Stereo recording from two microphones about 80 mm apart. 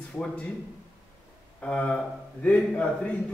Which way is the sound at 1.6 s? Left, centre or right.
Centre.